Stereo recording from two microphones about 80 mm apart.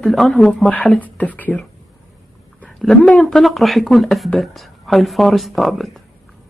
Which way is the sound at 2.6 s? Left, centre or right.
Centre.